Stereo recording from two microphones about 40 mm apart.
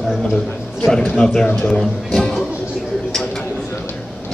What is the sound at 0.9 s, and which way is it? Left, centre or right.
A man's voice, centre.